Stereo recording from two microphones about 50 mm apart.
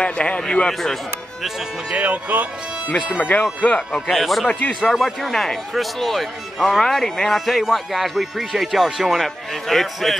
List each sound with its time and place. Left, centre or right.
0.0 s a man's voice: left
1.9 s speech: right
3.2 s speech: left
3.9 s speech: centre